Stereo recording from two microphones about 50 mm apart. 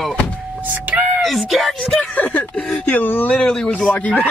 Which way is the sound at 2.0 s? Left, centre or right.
Left.